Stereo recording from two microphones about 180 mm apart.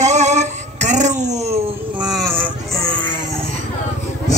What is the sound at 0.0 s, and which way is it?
Music, 40° right (ahead or behind).